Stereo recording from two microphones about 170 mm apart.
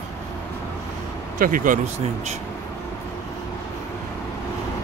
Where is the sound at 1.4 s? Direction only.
55° right (ahead or behind).